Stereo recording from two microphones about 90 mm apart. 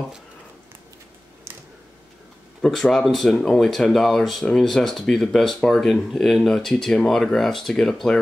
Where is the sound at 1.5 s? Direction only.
25° right (ahead or behind).